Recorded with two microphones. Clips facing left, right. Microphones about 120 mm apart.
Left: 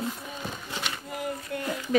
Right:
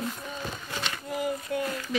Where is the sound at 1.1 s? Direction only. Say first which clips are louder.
Right 6 dB; centre (ahead or behind).